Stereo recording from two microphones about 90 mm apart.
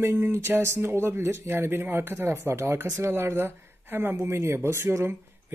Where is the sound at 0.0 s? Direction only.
25° right (ahead or behind).